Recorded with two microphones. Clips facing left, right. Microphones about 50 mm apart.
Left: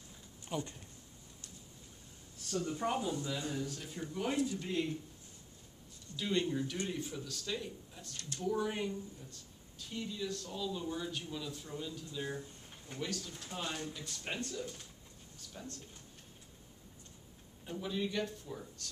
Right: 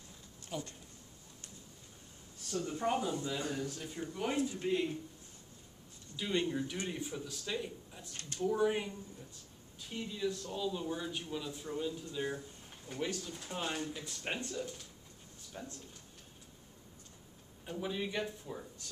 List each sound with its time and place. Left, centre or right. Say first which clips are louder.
0.5 s speech: left 2 dB; centre
2.5 s speech: right 1 dB; centre
3.3 s speech: right 1 dB; right
4.1 s speech: even; centre
4.4 s speech: even; right
4.6 s speech: right 3 dB; centre
6.1 s speech: even; centre
8.1 s speech: left 1 dB; right
8.4 s speech: right 3 dB; centre
17.6 s speech: even; centre